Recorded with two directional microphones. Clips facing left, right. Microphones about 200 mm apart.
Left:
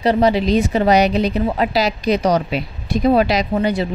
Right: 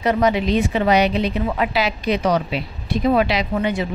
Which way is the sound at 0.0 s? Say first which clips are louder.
Left 3 dB; 35° left (ahead or behind).